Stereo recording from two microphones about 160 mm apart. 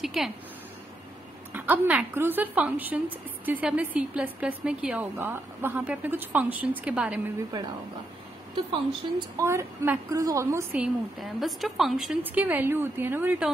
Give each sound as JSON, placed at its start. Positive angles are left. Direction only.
{"t": 0.0, "sound": "speech", "side_deg": 0}
{"t": 1.5, "sound": "a woman's voice", "side_deg": -10}
{"t": 9.4, "sound": "a woman's voice", "side_deg": -15}
{"t": 10.8, "sound": "a woman's voice", "side_deg": 0}